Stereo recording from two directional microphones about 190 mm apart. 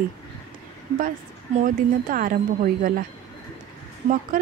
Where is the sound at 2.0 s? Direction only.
45° right (ahead or behind).